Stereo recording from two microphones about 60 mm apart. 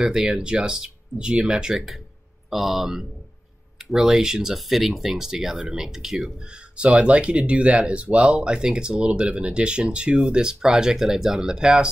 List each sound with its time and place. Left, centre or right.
0.0 s speech: centre
6.8 s speech: centre